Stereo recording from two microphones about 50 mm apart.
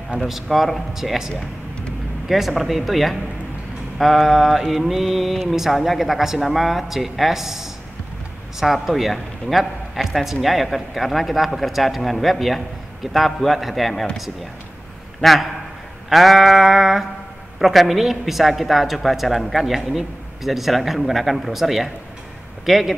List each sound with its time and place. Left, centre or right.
0.3 s a woman's voice: centre
1.3 s a sound: left
2.2 s a woman's voice: centre
15.1 s a woman's voice: centre